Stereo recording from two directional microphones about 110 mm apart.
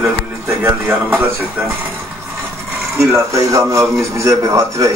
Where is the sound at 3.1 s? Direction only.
30° right (ahead or behind).